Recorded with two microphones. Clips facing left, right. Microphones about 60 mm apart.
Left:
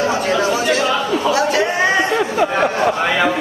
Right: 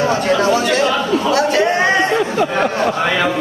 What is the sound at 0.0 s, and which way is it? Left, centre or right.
Chatter, centre.